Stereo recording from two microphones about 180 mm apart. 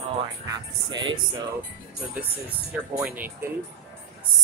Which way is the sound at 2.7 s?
10° right (ahead or behind).